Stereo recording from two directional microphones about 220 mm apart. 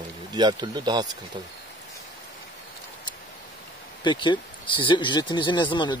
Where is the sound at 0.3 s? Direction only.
20° right (ahead or behind).